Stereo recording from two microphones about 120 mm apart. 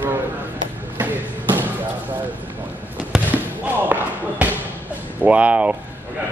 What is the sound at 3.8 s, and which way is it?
Basketball bounce, 15° right (ahead or behind).